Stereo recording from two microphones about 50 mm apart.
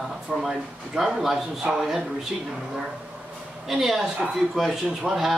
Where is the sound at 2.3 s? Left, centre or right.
Right.